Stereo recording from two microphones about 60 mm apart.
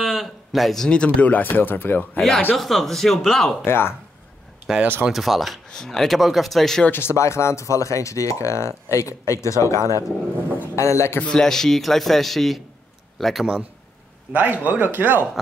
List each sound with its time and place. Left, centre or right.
0.0 s a sound: centre
0.8 s speech: centre; by 2.2 s left
2.5 s a man's voice: centre
3.6 s speech: left
4.7 s a man's voice: centre
6.9 s a man's voice: left
11.3 s a man's voice: centre
14.3 s a man's voice: right